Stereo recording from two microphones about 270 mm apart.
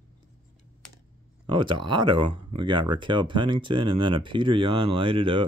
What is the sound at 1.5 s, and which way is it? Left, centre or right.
Speech, centre.